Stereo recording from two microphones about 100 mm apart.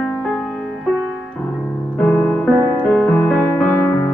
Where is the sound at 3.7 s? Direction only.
30° left (ahead or behind).